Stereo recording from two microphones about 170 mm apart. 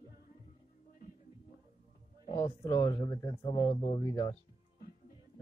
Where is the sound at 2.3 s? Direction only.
15° left (ahead or behind).